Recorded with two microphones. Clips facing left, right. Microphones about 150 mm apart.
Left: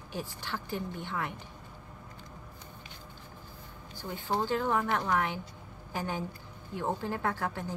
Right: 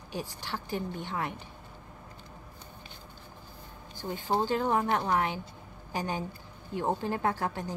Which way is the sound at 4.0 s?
25° right (ahead or behind).